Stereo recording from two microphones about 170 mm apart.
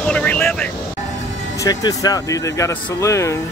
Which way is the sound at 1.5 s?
20° left (ahead or behind).